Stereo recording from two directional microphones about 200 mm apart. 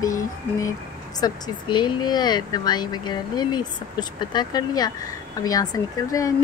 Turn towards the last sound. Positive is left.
turn(degrees=15)  # may be behind; listen again after turning